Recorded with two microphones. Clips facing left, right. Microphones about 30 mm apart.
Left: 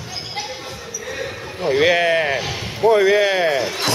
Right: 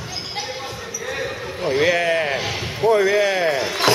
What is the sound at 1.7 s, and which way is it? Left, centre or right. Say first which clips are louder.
Speech: left 2 dB; centre.